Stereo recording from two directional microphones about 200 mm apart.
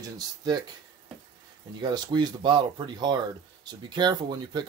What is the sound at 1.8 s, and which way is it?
Speech, 20° right (ahead or behind).